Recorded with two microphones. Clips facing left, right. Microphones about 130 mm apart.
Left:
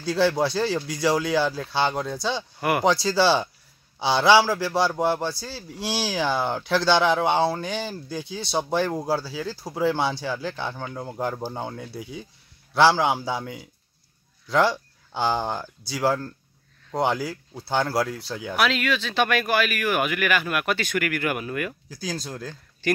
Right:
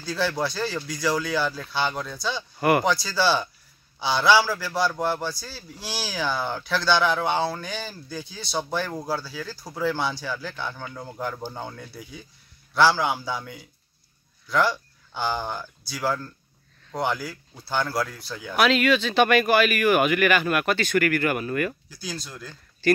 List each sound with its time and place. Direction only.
0.1 s a man's voice: 25° left (ahead or behind)
15.1 s a man's voice: 30° left (ahead or behind)
18.6 s speech: centre (ahead or behind)
22.0 s speech: 45° left (ahead or behind)
22.8 s speech: 15° left (ahead or behind)